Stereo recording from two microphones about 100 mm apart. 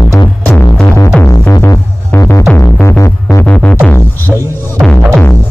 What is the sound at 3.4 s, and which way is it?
Music, 15° left (ahead or behind).